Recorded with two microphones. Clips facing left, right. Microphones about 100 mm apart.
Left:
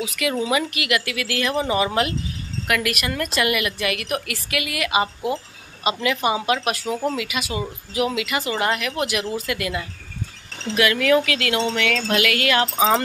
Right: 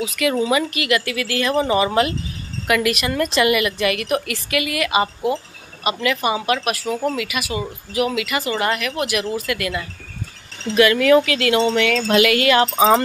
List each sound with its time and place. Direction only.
0.0 s a woman's voice: 10° left (ahead or behind)
10.8 s a woman's voice: centre (ahead or behind)